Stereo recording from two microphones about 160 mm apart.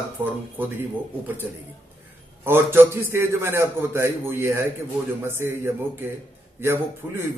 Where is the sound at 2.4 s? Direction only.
15° right (ahead or behind).